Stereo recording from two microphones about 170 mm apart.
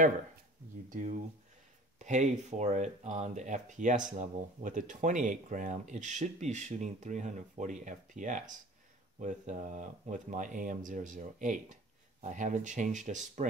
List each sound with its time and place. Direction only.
0.8 s speech: 50° right (ahead or behind)